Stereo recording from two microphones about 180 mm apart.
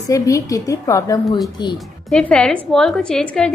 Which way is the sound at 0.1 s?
20° left (ahead or behind).